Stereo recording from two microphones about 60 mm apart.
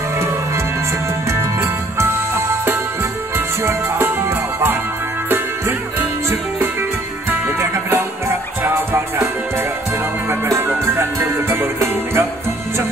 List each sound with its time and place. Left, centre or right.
1.3 s music: right
7.2 s music: right
10.6 s music: right